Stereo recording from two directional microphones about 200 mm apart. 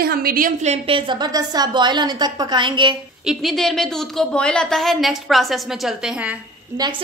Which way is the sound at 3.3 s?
Centre (ahead or behind).